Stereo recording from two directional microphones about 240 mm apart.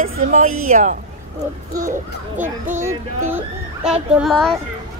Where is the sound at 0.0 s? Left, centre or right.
Right.